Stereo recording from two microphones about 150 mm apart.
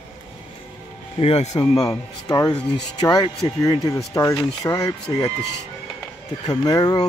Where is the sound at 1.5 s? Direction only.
25° left (ahead or behind).